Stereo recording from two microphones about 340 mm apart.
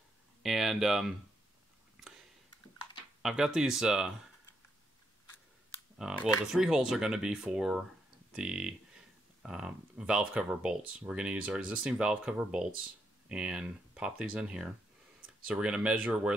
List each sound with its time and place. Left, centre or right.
0.4 s speech: centre
3.2 s speech: centre
5.9 s speech: centre